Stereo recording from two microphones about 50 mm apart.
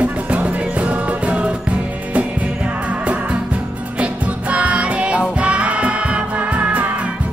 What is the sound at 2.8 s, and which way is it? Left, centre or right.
Music, right.